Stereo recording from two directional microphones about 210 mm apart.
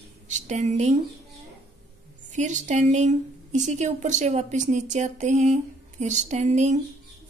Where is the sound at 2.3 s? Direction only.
35° right (ahead or behind).